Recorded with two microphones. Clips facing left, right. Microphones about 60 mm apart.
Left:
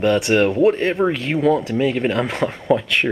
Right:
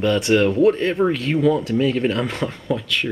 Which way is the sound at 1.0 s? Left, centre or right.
Centre.